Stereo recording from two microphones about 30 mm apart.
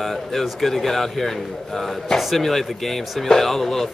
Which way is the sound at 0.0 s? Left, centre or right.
Centre.